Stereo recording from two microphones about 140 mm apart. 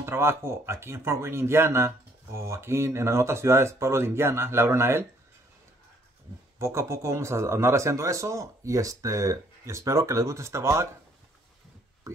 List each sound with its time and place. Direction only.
0.0 s speech: 15° right (ahead or behind)
6.6 s a man's voice: 20° right (ahead or behind)